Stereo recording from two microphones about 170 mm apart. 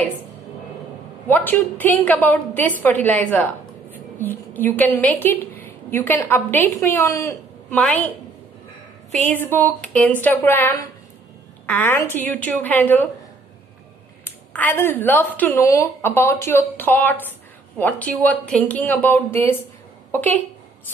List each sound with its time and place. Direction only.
1.2 s a woman's voice: 10° left (ahead or behind)
9.3 s a woman's voice: 10° left (ahead or behind)
14.2 s a woman's voice: 10° left (ahead or behind)